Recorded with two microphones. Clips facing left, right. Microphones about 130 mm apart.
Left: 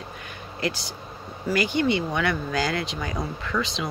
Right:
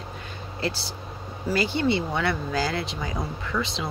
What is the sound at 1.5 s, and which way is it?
Speech, 30° right (ahead or behind).